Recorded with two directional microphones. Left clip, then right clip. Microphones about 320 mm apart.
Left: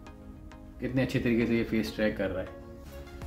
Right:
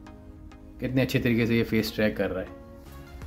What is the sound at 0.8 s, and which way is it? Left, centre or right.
Speech, right.